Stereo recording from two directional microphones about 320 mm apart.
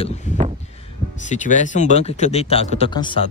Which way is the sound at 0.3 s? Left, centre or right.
Left.